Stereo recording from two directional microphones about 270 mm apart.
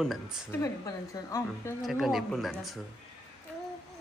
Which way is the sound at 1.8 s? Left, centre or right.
Centre.